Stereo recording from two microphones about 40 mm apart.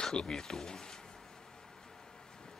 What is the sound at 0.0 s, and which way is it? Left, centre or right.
Speech, centre.